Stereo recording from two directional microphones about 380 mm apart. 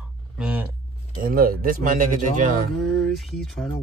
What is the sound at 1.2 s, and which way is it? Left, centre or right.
Speech, right.